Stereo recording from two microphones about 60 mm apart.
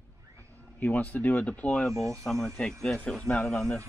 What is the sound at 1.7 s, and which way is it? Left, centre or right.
Speech, centre.